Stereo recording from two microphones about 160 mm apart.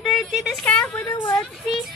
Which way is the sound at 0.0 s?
5° left (ahead or behind).